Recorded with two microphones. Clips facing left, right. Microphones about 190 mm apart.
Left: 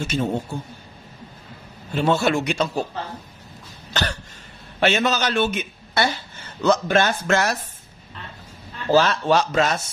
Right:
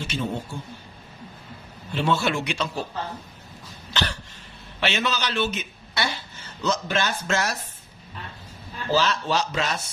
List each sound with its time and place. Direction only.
0.0 s speech: 45° left (ahead or behind)
2.0 s speech: 45° left (ahead or behind)
3.9 s cough: 45° left (ahead or behind)
4.7 s a man's voice: 45° left (ahead or behind)
8.9 s speech: 55° left (ahead or behind)